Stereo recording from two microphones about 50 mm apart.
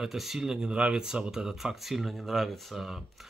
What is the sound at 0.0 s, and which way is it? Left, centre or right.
Speech, centre.